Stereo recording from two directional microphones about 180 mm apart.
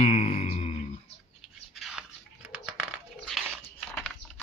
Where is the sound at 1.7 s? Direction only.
Centre (ahead or behind).